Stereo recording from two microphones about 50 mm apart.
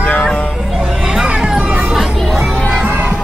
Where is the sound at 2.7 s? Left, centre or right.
Right.